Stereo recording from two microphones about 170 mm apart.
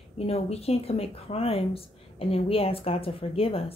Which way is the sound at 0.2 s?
35° left (ahead or behind).